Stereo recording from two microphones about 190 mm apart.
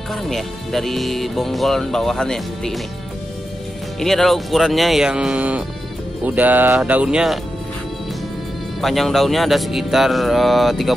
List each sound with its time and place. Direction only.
0.1 s music: centre (ahead or behind)
4.0 s music: centre (ahead or behind)
6.2 s speech: 10° right (ahead or behind)
8.8 s music: centre (ahead or behind)